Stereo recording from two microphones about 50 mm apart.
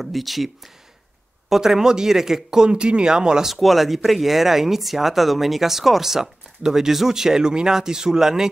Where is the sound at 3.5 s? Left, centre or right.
Centre.